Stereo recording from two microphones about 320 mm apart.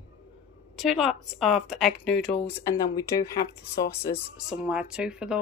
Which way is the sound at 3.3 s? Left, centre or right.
Left.